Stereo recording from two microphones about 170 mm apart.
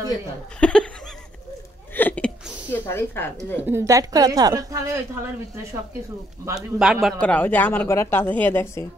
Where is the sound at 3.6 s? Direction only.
15° right (ahead or behind).